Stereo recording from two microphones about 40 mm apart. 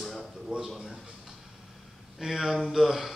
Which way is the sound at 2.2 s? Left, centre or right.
Centre.